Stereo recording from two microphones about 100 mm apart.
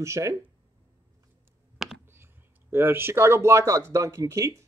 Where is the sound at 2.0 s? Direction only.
25° right (ahead or behind).